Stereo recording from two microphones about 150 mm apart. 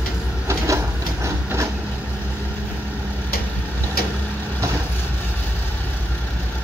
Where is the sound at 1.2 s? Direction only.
20° right (ahead or behind).